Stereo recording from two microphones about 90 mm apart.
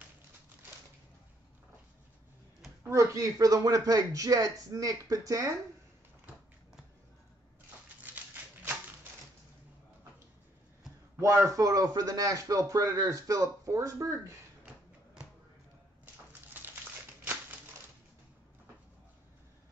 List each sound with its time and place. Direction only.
2.9 s a man's voice: 35° right (ahead or behind)
8.0 s dog: 20° right (ahead or behind)
11.1 s a man's voice: 35° right (ahead or behind)
17.2 s typewriter: 20° right (ahead or behind)